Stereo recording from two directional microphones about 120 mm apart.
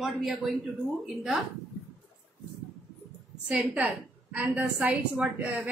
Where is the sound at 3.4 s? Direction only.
10° right (ahead or behind).